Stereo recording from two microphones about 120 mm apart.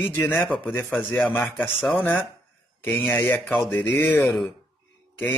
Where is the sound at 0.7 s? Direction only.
20° left (ahead or behind).